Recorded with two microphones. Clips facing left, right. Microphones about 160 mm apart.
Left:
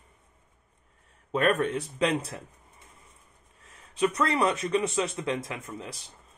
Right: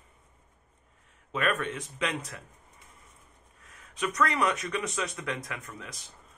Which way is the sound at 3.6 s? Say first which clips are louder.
Left 7 dB; 30° left (ahead or behind).